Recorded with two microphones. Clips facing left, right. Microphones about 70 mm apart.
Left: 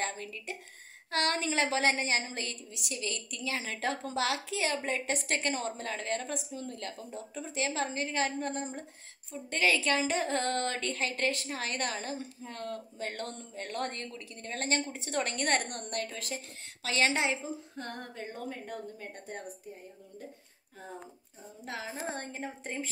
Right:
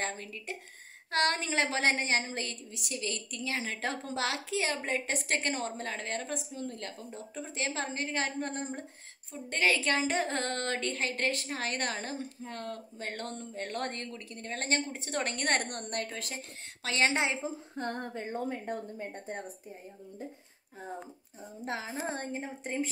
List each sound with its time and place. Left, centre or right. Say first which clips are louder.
0.0 s a woman's voice: even; right
21.6 s a woman's voice: right 2 dB; right